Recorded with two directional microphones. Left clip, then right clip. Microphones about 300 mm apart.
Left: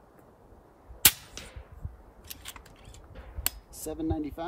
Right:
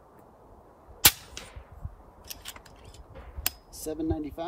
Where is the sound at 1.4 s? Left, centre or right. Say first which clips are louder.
Right 1 dB; right.